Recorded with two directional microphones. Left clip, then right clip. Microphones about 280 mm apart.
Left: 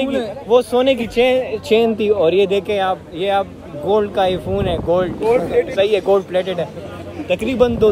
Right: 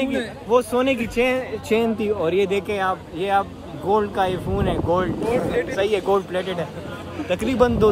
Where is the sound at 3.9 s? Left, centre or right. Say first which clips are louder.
Left 4 dB; centre.